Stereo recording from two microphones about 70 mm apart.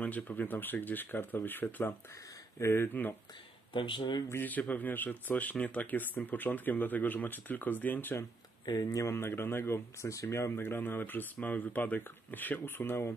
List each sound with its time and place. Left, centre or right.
0.0 s speech: left
4.3 s speech: left
8.6 s speech: left
9.2 s speech: left